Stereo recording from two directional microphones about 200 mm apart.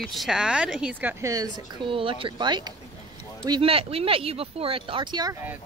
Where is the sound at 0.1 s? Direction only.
Centre (ahead or behind); by 5.4 s 20° right (ahead or behind).